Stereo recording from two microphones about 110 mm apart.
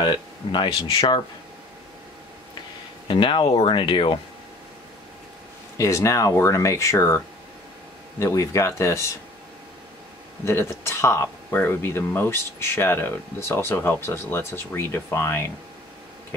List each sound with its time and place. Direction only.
0.0 s speech: 45° left (ahead or behind)
3.1 s speech: 50° left (ahead or behind)
5.8 s speech: 30° left (ahead or behind)
10.4 s speech: 25° left (ahead or behind)